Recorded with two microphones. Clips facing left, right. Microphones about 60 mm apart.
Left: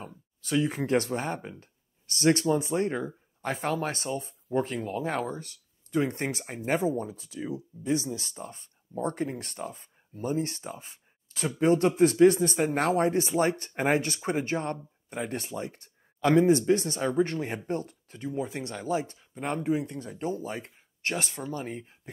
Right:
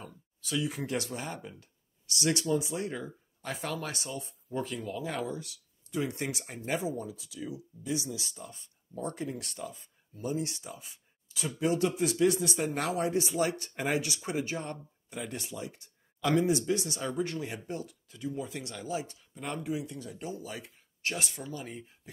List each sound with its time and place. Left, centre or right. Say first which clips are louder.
0.0 s speech: left 3 dB; left